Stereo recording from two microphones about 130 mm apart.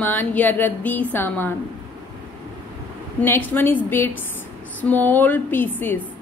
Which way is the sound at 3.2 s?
15° left (ahead or behind).